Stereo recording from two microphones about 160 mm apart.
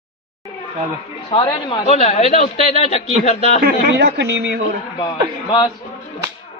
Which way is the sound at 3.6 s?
90° right.